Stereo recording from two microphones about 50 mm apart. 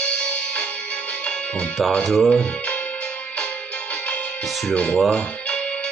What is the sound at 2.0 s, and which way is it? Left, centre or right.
Speech, centre.